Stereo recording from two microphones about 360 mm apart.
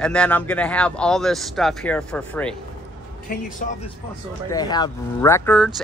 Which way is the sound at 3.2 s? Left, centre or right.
Left.